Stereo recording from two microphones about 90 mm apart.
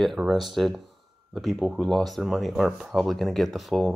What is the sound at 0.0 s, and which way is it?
Speech, centre (ahead or behind).